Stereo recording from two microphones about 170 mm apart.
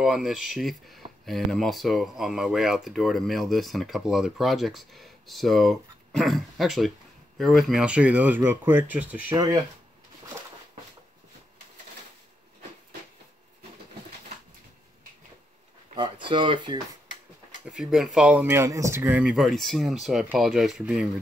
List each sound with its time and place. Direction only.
0.0 s speech: 5° right (ahead or behind)
9.3 s speech: 20° right (ahead or behind)
16.0 s speech: 30° right (ahead or behind)
17.6 s speech: centre (ahead or behind)